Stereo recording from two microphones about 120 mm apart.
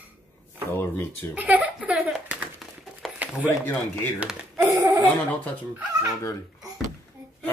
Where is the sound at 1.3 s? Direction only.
15° right (ahead or behind).